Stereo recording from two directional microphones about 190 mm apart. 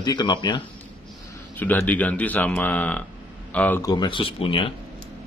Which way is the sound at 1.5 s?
10° left (ahead or behind).